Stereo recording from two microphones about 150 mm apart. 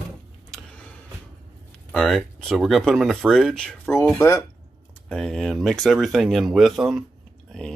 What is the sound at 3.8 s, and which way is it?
Speech, 20° left (ahead or behind).